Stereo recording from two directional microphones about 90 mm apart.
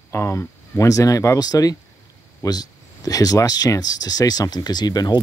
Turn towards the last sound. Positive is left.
turn(degrees=50)  # may be behind; listen again after turning